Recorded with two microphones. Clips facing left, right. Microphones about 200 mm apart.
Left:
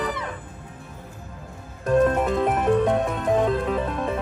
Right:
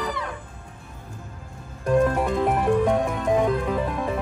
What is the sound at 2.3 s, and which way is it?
Music, 20° left (ahead or behind).